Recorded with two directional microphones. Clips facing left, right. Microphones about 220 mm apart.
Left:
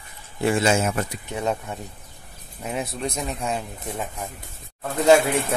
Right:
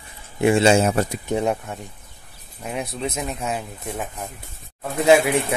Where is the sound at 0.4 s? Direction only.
25° right (ahead or behind).